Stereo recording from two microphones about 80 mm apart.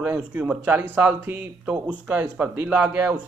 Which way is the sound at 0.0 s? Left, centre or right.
Centre.